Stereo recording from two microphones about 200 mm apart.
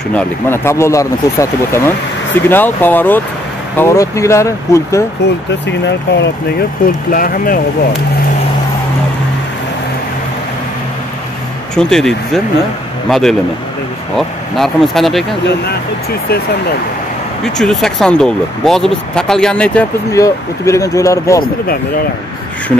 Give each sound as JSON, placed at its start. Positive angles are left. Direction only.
{"t": 0.1, "sound": "speech", "side_deg": 10}
{"t": 5.5, "sound": "speech", "side_deg": 60}
{"t": 7.1, "sound": "speech", "side_deg": 45}
{"t": 11.7, "sound": "speech", "side_deg": 5}
{"t": 17.6, "sound": "speech", "side_deg": 0}